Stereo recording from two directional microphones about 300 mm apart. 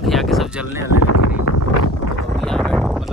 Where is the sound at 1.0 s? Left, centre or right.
Left.